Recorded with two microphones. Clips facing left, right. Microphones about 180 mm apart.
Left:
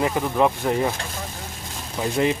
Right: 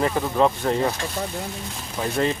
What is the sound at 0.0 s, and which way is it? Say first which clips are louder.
Speech: even; 15° left (ahead or behind).